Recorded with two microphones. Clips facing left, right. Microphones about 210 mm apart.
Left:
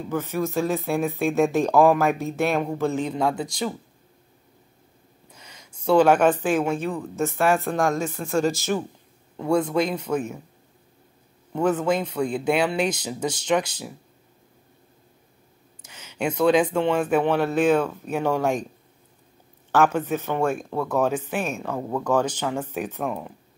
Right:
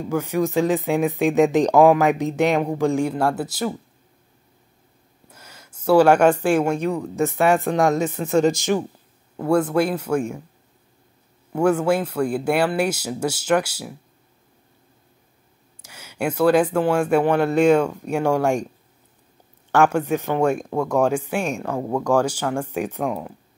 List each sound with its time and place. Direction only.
0.1 s speech: 15° right (ahead or behind)
5.3 s a sound: 5° right (ahead or behind)
7.3 s speech: centre (ahead or behind)
11.5 s speech: 10° right (ahead or behind)
15.8 s speech: 10° right (ahead or behind)
19.8 s speech: 10° right (ahead or behind)